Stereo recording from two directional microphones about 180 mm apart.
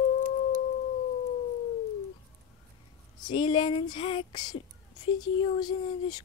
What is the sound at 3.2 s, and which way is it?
A woman's voice, 25° left (ahead or behind).